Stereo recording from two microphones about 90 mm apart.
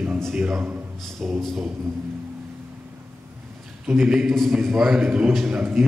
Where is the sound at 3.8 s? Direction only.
5° right (ahead or behind).